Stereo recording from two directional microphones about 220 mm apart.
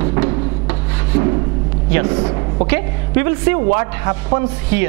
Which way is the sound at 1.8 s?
10° right (ahead or behind).